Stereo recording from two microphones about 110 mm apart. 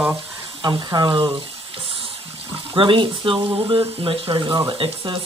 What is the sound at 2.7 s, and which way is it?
Speech, 50° right (ahead or behind).